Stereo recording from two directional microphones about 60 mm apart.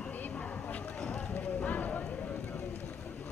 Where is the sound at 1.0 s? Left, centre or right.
Centre.